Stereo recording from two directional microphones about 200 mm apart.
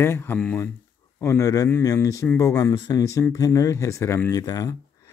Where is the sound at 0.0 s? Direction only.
10° left (ahead or behind).